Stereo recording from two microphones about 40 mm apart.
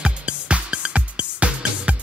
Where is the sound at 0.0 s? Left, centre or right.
Right.